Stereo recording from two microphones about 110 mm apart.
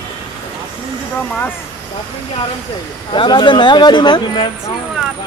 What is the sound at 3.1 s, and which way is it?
Speech, 45° left (ahead or behind).